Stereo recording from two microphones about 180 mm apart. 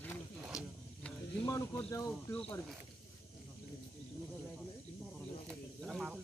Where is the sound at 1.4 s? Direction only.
15° left (ahead or behind).